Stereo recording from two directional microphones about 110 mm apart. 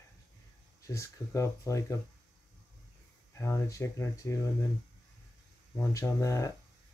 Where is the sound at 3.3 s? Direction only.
25° left (ahead or behind).